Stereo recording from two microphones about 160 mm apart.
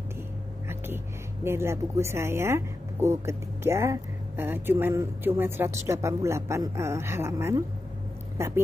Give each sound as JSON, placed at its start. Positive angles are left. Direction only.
{"t": 1.4, "sound": "speech", "side_deg": -15}